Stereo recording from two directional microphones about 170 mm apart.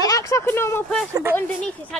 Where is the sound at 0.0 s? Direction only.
20° left (ahead or behind).